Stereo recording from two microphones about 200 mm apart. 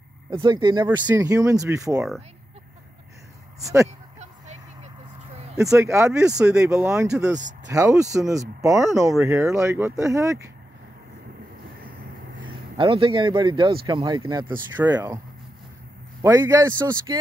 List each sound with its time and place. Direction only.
0.3 s speech: 25° right (ahead or behind)
3.6 s speech: 15° right (ahead or behind)
5.6 s speech: 15° right (ahead or behind)
12.4 s speech: 25° right (ahead or behind)
14.8 s speech: 10° right (ahead or behind)
16.2 s speech: 15° right (ahead or behind)